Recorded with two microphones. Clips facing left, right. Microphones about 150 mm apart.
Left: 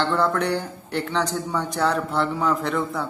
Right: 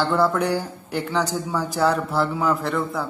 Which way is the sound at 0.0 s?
5° right (ahead or behind).